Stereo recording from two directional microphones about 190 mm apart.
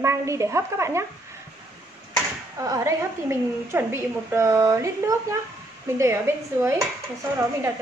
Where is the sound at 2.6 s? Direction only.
15° right (ahead or behind).